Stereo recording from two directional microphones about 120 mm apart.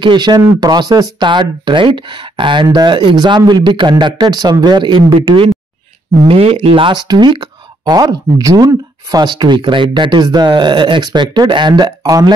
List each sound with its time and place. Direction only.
0.0 s speech: 40° right (ahead or behind)